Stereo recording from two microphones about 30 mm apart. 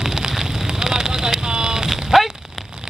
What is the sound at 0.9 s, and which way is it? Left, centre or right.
Vehicle, right.